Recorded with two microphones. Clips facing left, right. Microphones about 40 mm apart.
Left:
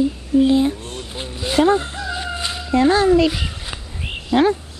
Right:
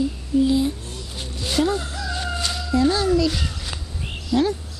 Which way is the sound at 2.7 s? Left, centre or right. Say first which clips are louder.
Left 5 dB; left.